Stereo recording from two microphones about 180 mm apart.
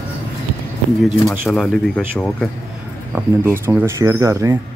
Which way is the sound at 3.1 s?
15° right (ahead or behind).